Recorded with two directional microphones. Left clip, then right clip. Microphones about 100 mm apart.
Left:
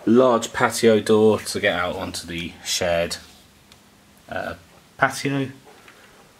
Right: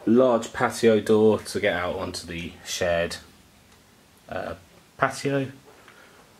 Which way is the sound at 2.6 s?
15° left (ahead or behind).